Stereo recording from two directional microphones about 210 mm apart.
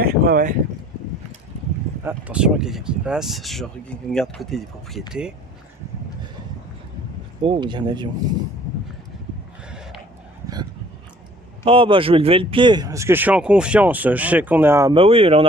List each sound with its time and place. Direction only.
0.0 s a sound: 45° right (ahead or behind)
2.0 s speech: 5° right (ahead or behind)
7.4 s speech: 20° right (ahead or behind)
10.4 s a sound: 20° right (ahead or behind)
11.6 s speech: 25° right (ahead or behind)
15.0 s speech: 25° right (ahead or behind)